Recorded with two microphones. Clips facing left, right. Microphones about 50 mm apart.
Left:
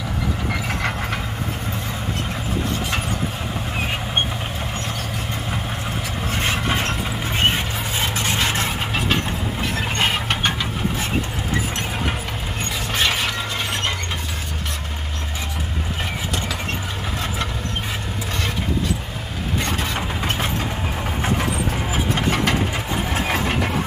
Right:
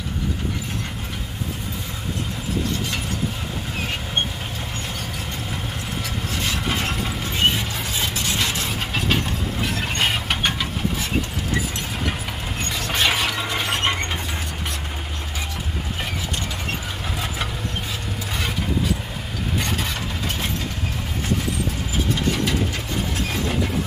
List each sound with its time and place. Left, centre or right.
6.3 s vehicle: left
7.3 s a sound: left
9.9 s a sound: centre
12.9 s shatter: centre
19.6 s vehicle: centre
22.3 s engine: left